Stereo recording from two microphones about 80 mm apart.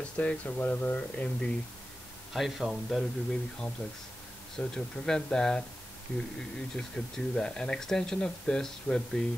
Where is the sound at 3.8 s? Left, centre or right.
Centre.